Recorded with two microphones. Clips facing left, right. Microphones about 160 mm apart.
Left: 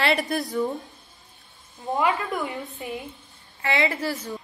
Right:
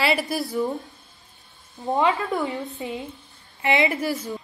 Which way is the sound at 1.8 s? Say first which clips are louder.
Right 2 dB; 20° right (ahead or behind).